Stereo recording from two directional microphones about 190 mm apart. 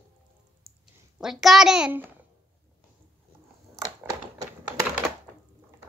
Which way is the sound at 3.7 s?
15° right (ahead or behind).